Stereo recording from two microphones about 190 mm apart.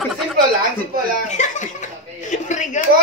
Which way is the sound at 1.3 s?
40° left (ahead or behind).